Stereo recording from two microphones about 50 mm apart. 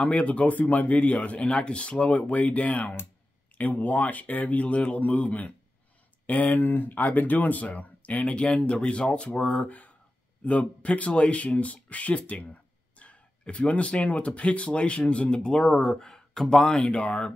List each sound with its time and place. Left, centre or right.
0.0 s speech: left